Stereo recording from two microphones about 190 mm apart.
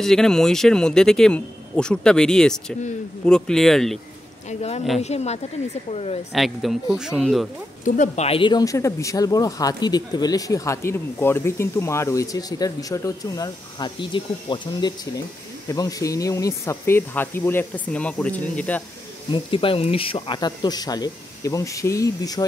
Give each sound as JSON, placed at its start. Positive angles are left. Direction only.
{"t": 0.0, "sound": "speech", "side_deg": 0}
{"t": 4.5, "sound": "a woman's voice", "side_deg": 35}
{"t": 6.3, "sound": "speech", "side_deg": 0}
{"t": 7.8, "sound": "speech", "side_deg": 40}
{"t": 19.3, "sound": "speech", "side_deg": 30}